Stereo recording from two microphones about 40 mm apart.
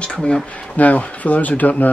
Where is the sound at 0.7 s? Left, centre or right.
Left.